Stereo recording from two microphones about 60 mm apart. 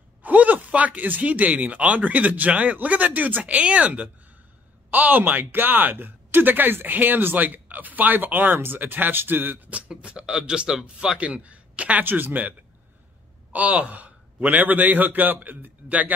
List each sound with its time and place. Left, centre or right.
0.2 s speech: right
9.7 s speech: right
12.0 s a man's voice: right